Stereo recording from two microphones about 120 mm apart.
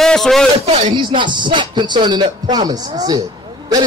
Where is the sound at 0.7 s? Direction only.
70° right (ahead or behind).